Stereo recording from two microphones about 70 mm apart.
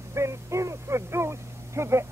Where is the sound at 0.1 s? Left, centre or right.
Right.